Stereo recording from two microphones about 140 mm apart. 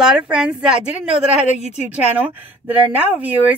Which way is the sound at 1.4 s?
55° left (ahead or behind).